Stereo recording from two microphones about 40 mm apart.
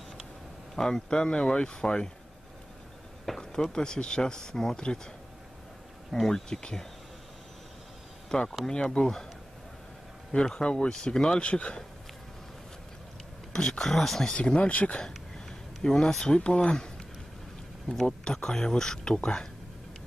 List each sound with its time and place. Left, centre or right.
0.7 s speech: centre
3.3 s a sound: centre
3.7 s speech: centre
6.1 s speech: centre
8.3 s speech: centre
10.3 s speech: left
13.5 s speech: centre
14.2 s speech: left
14.6 s speech: left
15.0 s speech: centre
18.0 s speech: centre